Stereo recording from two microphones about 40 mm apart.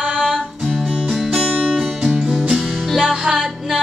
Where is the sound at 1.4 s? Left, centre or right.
Right.